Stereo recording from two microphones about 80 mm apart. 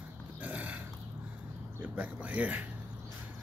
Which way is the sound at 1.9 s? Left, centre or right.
Centre.